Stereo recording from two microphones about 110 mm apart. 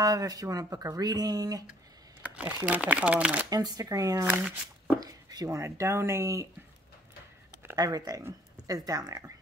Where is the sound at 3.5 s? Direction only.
35° right (ahead or behind).